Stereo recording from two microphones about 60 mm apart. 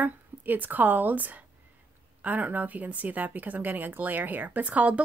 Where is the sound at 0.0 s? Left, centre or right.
Right.